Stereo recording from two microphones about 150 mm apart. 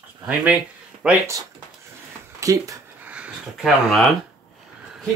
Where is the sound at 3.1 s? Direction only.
5° right (ahead or behind).